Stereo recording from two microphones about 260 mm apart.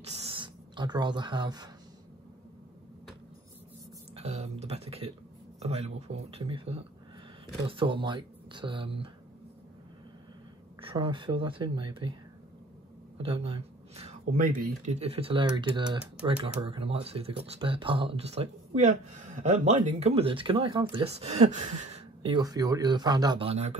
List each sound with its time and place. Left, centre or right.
0.0 s speech: right
4.1 s a sound: right
5.6 s speech: right
10.8 s speech: centre
13.2 s speech: centre